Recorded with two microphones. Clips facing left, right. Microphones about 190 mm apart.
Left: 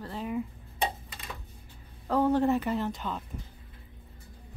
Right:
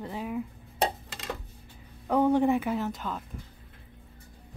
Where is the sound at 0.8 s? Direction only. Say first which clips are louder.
Right 3 dB; 85° right.